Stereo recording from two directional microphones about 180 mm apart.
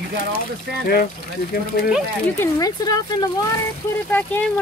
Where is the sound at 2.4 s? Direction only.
20° left (ahead or behind).